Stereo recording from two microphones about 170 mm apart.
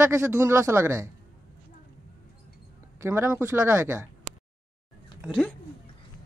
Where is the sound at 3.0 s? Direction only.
15° right (ahead or behind).